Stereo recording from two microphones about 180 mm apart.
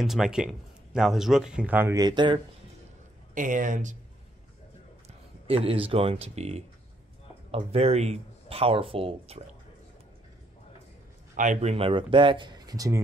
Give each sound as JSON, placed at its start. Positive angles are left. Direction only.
{"t": 0.0, "sound": "speech", "side_deg": 0}
{"t": 3.3, "sound": "speech", "side_deg": -45}
{"t": 5.0, "sound": "speech", "side_deg": -30}
{"t": 11.3, "sound": "speech", "side_deg": -40}